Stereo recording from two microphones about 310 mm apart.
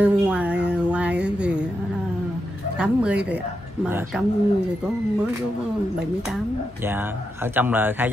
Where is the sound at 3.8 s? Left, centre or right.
Centre.